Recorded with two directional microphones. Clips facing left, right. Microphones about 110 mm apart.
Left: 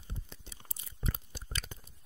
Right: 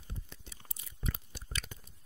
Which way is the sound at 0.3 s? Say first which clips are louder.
Left 1 dB; 30° left (ahead or behind).